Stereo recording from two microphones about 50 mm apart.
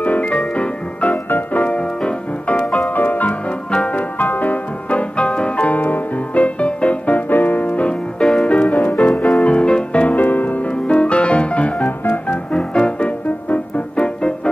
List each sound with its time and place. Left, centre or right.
0.0 s music: left
3.7 s music: left
4.2 s music: left
5.7 s music: left
8.2 s music: centre
8.5 s music: left
12.0 s music: left
12.5 s music: left